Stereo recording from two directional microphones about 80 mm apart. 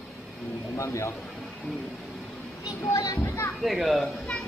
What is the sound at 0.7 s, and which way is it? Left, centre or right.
Speech, left.